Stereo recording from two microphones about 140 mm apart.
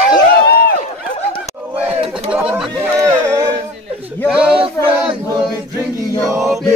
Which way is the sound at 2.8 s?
20° right (ahead or behind).